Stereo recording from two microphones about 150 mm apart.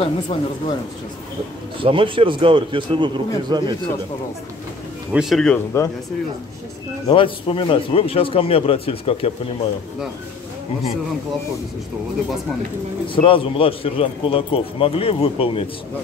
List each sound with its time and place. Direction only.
0.0 s speech: 40° left (ahead or behind)
1.8 s speech: 35° right (ahead or behind)
5.1 s speech: centre (ahead or behind)
7.1 s speech: 35° left (ahead or behind)
13.1 s speech: 35° left (ahead or behind)